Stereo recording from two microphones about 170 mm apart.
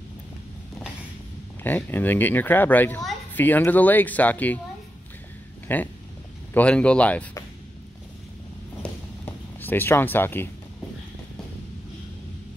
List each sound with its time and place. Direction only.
1.6 s speech: 10° left (ahead or behind)
5.7 s speech: 10° left (ahead or behind)
9.2 s speech: 10° left (ahead or behind)